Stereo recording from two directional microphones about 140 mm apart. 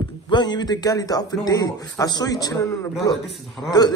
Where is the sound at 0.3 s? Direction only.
30° left (ahead or behind).